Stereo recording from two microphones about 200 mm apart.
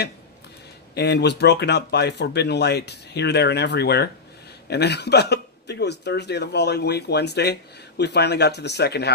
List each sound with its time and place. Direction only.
0.9 s speech: 55° left (ahead or behind)